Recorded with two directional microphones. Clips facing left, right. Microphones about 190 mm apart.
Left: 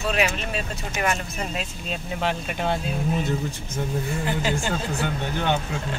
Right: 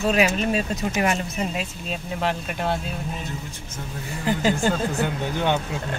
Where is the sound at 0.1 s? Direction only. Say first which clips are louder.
Right 3 dB; 35° right (ahead or behind).